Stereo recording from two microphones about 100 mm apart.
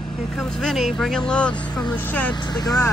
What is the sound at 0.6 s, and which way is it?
Speech, centre (ahead or behind).